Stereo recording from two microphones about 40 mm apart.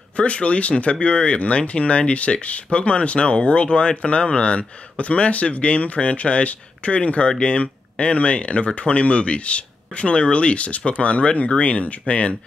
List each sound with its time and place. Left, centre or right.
0.2 s speech: left